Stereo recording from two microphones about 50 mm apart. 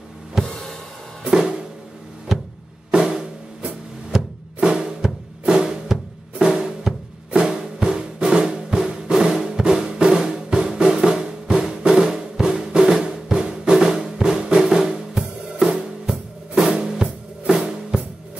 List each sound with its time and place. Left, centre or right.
0.4 s drum kit: centre
1.2 s music: centre
2.3 s music: centre
2.9 s music: centre
11.9 s drum: centre